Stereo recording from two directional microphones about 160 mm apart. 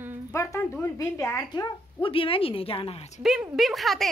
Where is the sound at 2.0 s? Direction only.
35° left (ahead or behind).